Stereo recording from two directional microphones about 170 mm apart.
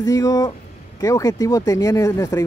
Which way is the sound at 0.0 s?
20° left (ahead or behind).